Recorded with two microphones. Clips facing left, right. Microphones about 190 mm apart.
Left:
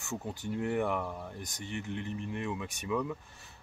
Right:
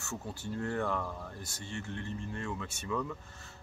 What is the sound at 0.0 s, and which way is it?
Speech, 15° left (ahead or behind).